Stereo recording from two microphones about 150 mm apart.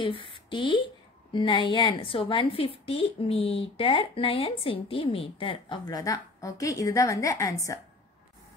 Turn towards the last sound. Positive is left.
turn(degrees=20)  # may be behind; listen again after turning